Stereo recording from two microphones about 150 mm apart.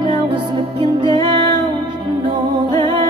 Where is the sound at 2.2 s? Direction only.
35° right (ahead or behind).